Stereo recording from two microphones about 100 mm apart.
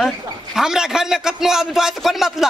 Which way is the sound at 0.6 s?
5° right (ahead or behind).